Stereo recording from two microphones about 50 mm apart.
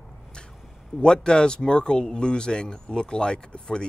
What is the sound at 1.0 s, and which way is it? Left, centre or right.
Speech, centre.